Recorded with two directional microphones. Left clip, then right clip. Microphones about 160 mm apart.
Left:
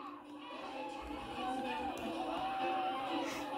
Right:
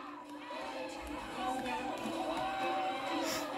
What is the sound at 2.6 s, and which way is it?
Crowd, 10° left (ahead or behind).